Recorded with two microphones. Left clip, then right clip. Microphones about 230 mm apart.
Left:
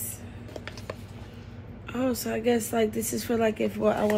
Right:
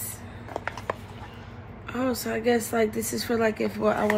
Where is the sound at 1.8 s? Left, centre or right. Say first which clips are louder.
Right 1 dB; centre.